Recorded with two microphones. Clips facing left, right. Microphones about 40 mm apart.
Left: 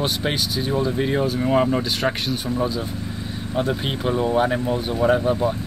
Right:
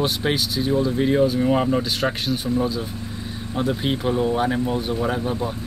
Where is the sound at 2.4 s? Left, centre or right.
Centre.